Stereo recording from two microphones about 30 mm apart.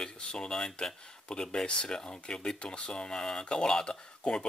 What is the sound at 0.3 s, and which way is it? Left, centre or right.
Speech, left.